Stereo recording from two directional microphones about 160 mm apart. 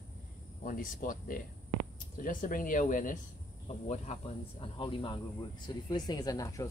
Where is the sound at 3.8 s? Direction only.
45° left (ahead or behind).